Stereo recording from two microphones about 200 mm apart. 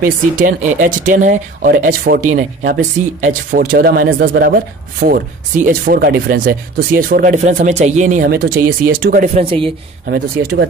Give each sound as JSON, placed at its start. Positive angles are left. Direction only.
{"t": 0.0, "sound": "speech", "side_deg": -40}
{"t": 10.0, "sound": "speech", "side_deg": -55}